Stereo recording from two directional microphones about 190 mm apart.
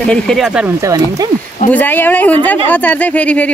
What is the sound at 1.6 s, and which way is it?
Speech, 10° left (ahead or behind).